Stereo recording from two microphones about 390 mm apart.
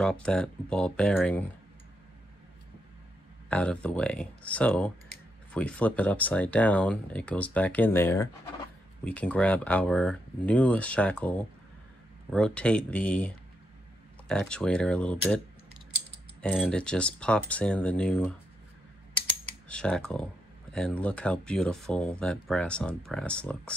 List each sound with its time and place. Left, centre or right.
0.0 s speech: centre
3.4 s speech: centre
19.7 s speech: centre